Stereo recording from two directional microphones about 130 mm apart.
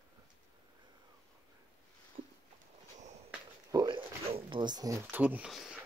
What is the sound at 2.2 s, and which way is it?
Walk, 85° right.